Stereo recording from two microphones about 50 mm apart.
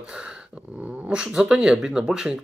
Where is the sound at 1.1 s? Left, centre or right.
Centre.